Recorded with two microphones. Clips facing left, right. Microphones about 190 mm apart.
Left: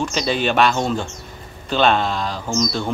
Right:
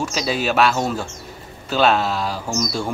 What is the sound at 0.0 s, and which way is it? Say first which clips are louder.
Speech: left 2 dB; 5° right (ahead or behind).